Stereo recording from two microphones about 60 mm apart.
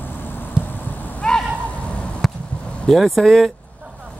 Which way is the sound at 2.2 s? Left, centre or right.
Centre.